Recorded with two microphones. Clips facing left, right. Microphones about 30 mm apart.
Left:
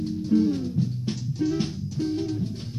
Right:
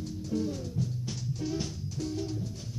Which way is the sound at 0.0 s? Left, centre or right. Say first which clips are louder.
Left 10 dB; left.